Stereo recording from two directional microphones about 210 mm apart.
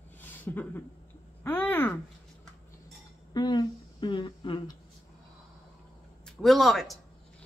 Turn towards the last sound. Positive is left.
turn(degrees=0)  # may be behind; listen again after turning